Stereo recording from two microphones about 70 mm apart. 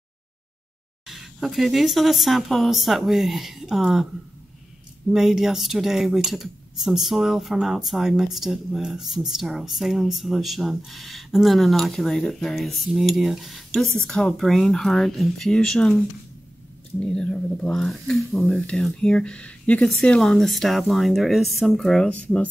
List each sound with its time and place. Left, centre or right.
1.0 s speech: centre
5.1 s speech: centre
17.0 s speech: centre
19.8 s speech: centre
22.1 s speech: centre